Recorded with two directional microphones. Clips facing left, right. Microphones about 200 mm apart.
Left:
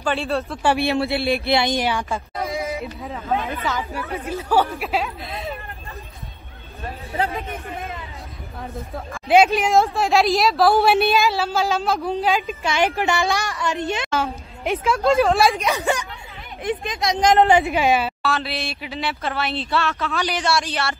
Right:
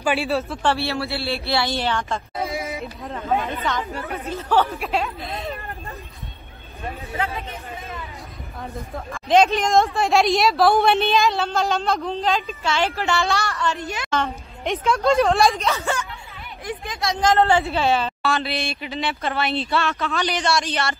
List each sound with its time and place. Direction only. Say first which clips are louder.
0.0 s a woman's voice: right 1 dB; 5° right (ahead or behind)
0.6 s a woman's voice: left 3 dB; 15° left (ahead or behind)
2.3 s a sound: even; centre (ahead or behind)
2.8 s a woman's voice: even; 5° left (ahead or behind)
8.9 s a woman's voice: left 1 dB; 5° left (ahead or behind); by 14.1 s 25° left (ahead or behind)
14.1 s a woman's voice: even; 5° left (ahead or behind)
15.6 s a woman's voice: left 2 dB; 15° left (ahead or behind)